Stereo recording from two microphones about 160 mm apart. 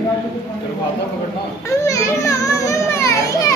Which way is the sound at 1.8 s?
20° left (ahead or behind).